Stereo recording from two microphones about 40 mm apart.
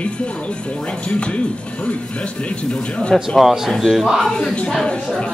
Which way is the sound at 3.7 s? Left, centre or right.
Centre.